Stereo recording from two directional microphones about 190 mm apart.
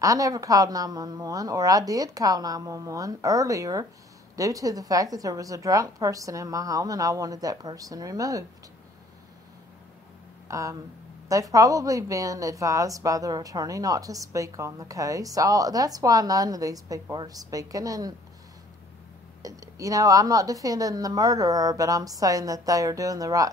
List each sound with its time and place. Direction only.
0.0 s a woman's voice: 15° right (ahead or behind)
10.5 s a woman's voice: 15° right (ahead or behind)
19.4 s speech: 20° right (ahead or behind)